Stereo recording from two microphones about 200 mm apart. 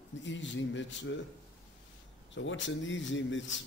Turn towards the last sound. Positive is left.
turn(degrees=65)  # may be behind; listen again after turning